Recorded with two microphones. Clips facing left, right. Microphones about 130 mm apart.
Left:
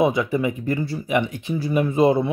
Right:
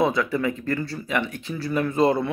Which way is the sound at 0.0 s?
15° left (ahead or behind).